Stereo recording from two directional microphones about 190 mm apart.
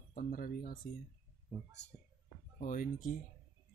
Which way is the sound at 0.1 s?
45° left (ahead or behind).